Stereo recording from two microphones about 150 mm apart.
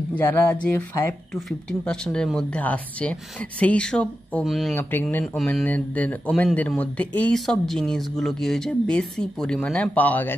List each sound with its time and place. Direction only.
0.2 s speech: 15° left (ahead or behind)
1.3 s speech: 5° left (ahead or behind)